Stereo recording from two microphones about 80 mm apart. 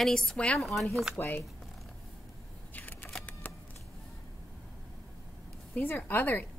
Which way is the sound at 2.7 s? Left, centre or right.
Left.